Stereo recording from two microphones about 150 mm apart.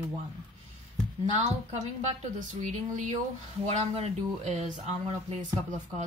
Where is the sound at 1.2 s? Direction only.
45° right (ahead or behind).